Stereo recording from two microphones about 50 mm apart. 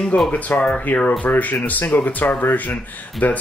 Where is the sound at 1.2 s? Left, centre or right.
Left.